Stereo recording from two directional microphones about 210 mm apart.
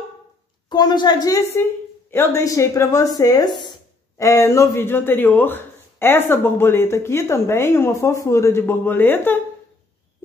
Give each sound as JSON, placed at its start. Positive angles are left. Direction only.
{"t": 0.7, "sound": "speech", "side_deg": 20}